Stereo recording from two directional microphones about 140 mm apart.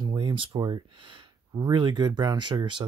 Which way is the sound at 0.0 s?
35° right (ahead or behind).